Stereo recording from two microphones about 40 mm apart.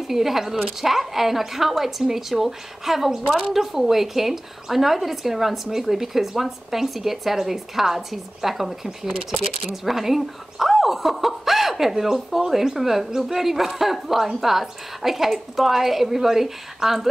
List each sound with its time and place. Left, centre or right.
0.1 s speech: centre